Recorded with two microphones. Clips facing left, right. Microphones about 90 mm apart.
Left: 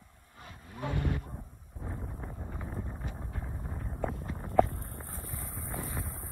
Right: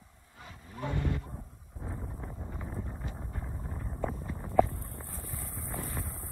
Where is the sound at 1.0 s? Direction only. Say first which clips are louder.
Even; 55° left (ahead or behind).